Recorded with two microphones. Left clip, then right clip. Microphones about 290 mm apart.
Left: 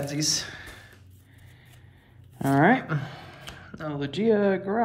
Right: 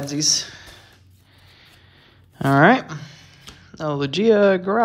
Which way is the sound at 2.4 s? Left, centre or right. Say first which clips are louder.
Right 6 dB; left.